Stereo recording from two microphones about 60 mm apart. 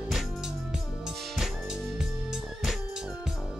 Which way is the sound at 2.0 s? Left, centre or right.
Centre.